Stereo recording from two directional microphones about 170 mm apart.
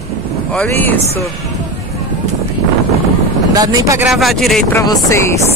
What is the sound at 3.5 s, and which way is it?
Speech, 20° right (ahead or behind).